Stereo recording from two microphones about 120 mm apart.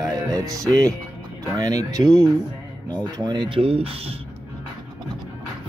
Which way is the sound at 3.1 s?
40° right (ahead or behind).